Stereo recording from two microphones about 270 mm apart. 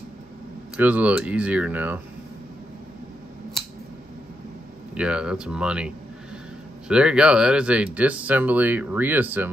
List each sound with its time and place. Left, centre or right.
0.7 s speech: centre
4.9 s speech: centre
6.9 s speech: centre